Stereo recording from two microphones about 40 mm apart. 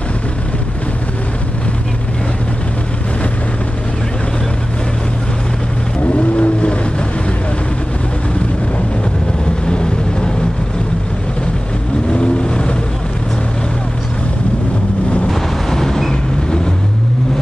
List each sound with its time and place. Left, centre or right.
6.3 s vehicle: left
9.7 s vehicle: left
12.1 s vehicle: left
15.2 s vehicle: centre